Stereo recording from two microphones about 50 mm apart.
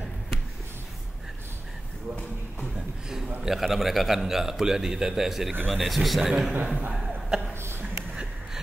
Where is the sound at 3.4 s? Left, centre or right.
Centre.